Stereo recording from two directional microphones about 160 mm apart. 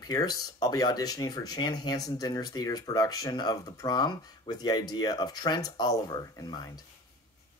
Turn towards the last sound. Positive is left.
turn(degrees=25)  # may be behind; listen again after turning